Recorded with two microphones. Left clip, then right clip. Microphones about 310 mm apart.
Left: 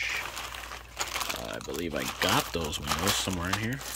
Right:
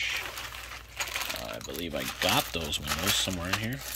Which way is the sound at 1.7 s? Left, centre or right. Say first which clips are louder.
Left 2 dB; centre.